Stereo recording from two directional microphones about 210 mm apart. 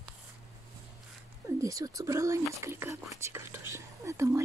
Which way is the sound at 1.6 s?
15° right (ahead or behind).